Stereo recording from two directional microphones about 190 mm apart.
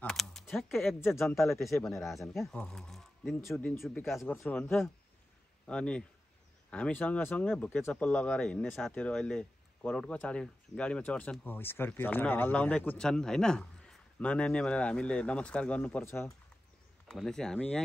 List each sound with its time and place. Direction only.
0.0 s a sound: centre (ahead or behind)
0.8 s speech: 10° left (ahead or behind)
1.6 s speech: centre (ahead or behind)
3.8 s speech: centre (ahead or behind)